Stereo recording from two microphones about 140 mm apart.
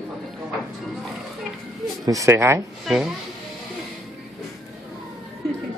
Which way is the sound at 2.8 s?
5° right (ahead or behind).